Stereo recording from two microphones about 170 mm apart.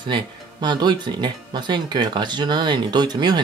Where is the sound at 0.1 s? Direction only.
25° right (ahead or behind).